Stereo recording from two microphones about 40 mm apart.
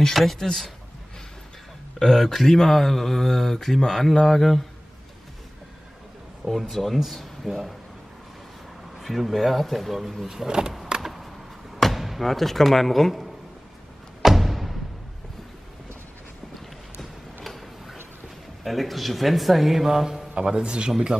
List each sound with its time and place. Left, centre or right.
0.1 s speech: centre
2.0 s speech: centre
6.7 s speech: centre
9.0 s speech: centre
10.2 s speech: centre
11.0 s basketball bounce: centre
14.2 s music: centre
17.0 s a sound: centre
18.6 s speech: centre
20.3 s a man's voice: right